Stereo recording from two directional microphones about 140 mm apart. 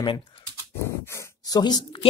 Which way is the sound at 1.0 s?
25° left (ahead or behind).